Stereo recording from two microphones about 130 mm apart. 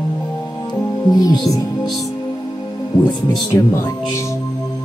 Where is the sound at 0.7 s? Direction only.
30° left (ahead or behind).